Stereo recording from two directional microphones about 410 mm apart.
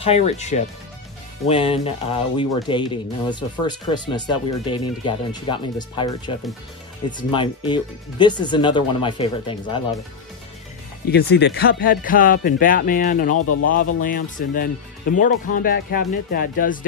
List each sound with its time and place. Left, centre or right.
0.0 s speech: centre
11.1 s speech: left